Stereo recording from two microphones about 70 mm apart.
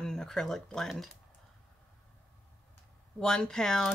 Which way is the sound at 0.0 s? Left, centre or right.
Centre.